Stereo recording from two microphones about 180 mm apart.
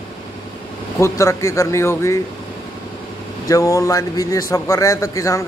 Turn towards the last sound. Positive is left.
turn(degrees=15)  # may be behind; listen again after turning